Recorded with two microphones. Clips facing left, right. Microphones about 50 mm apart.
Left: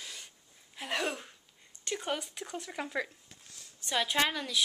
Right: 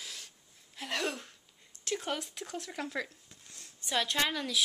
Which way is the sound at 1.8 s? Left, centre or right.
Centre.